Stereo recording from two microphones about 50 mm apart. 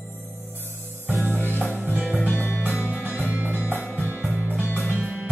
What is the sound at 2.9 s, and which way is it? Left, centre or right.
Music, right.